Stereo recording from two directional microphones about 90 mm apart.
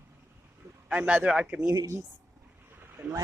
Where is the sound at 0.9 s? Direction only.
15° right (ahead or behind).